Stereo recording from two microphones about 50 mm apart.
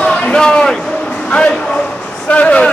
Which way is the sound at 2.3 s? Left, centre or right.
Left.